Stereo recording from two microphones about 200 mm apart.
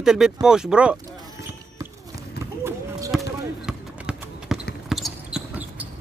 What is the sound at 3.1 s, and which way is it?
Basketball bounce, centre (ahead or behind).